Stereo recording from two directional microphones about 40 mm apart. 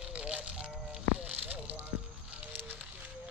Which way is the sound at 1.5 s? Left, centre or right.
Right.